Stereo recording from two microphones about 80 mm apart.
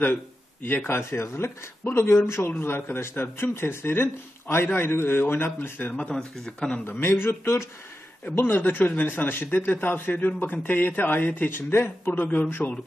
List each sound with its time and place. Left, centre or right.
0.0 s speech: left
5.9 s speech: centre
6.8 s speech: left